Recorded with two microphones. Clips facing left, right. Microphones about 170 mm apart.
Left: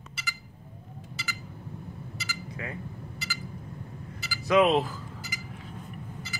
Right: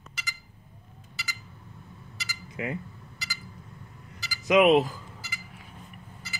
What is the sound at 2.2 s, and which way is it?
Cutlery, 15° right (ahead or behind).